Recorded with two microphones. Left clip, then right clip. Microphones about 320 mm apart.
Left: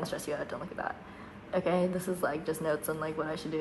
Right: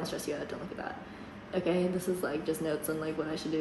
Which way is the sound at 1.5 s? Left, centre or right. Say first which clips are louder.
Left 1 dB; centre.